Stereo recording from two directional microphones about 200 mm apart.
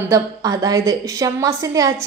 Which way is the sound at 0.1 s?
20° right (ahead or behind).